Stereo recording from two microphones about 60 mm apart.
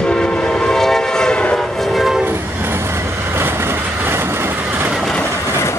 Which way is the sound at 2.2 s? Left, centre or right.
Right.